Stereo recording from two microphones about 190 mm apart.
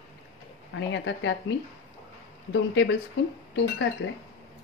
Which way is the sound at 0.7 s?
80° left.